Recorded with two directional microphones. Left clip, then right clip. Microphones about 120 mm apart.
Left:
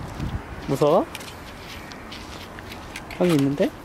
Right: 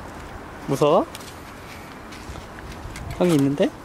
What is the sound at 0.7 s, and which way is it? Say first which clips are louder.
Speech: right 1 dB; 10° right (ahead or behind).